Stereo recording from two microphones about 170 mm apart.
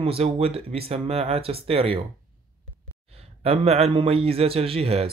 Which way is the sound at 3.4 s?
35° right (ahead or behind).